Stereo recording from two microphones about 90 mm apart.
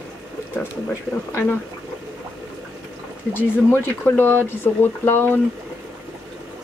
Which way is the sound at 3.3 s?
25° left (ahead or behind).